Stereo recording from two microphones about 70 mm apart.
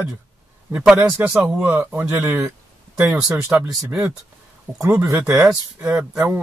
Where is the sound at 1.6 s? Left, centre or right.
Right.